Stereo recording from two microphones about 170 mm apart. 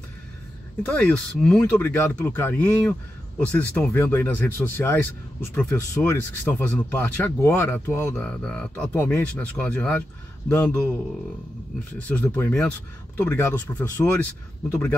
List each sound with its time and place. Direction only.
0.8 s speech: 5° left (ahead or behind)
12.0 s speech: 10° left (ahead or behind)